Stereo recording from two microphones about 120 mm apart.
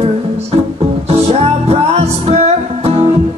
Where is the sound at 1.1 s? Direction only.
60° right (ahead or behind).